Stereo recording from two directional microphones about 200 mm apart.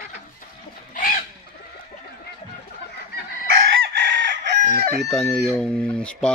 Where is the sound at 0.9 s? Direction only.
40° left (ahead or behind).